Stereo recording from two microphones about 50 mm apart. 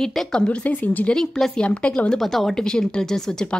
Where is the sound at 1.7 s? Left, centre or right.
Left.